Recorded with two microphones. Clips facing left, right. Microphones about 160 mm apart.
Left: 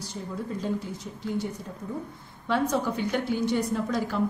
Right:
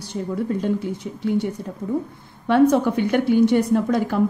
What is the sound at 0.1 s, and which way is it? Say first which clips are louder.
Speech: right 11 dB; 65° right (ahead or behind).